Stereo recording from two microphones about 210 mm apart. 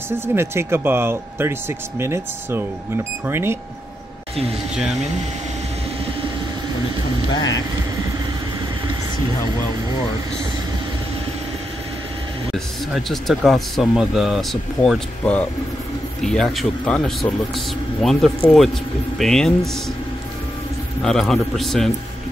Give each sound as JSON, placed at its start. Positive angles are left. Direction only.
{"t": 0.1, "sound": "speech", "side_deg": -10}
{"t": 12.5, "sound": "speech", "side_deg": 0}
{"t": 21.0, "sound": "speech", "side_deg": 5}